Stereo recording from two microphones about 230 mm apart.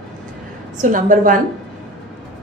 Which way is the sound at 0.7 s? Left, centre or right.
Right.